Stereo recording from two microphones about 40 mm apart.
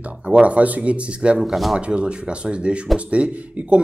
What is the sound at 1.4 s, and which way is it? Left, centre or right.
Speech, centre.